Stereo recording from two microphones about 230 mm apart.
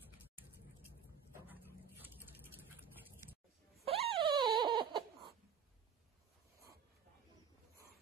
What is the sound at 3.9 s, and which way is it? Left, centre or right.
Dog, right.